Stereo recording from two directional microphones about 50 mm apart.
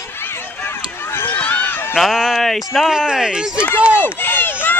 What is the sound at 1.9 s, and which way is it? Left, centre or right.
Speech, centre.